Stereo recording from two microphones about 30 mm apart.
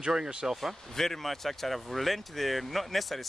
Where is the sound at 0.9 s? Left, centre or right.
Centre.